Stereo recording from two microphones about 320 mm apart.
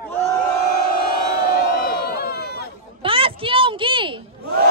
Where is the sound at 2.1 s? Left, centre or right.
Left.